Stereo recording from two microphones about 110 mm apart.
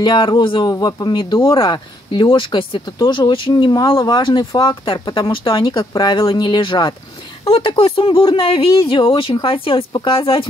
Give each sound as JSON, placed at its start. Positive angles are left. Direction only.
{"t": 0.0, "sound": "speech", "side_deg": 45}
{"t": 7.4, "sound": "speech", "side_deg": 55}